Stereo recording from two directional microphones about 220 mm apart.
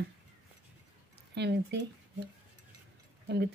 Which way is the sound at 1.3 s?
50° right (ahead or behind).